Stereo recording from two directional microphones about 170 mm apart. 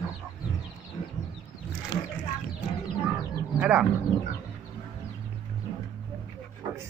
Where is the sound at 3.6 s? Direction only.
5° right (ahead or behind).